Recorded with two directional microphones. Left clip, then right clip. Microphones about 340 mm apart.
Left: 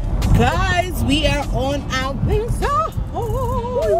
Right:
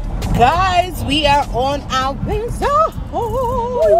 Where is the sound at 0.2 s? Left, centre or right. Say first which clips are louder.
Right 6 dB; centre.